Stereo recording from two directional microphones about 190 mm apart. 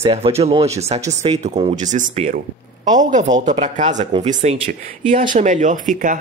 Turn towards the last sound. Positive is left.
turn(degrees=-40)  # may be behind; listen again after turning